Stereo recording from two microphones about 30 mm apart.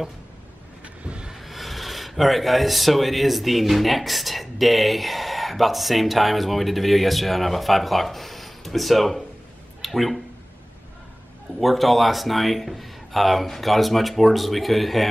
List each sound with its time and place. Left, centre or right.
0.8 s a sound: right
1.3 s speech: centre
11.6 s speech: centre